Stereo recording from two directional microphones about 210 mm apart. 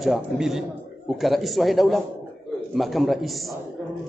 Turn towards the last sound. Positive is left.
turn(degrees=0)  # may be behind; listen again after turning